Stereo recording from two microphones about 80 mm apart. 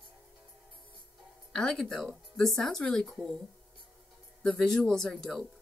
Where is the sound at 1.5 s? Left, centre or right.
Centre.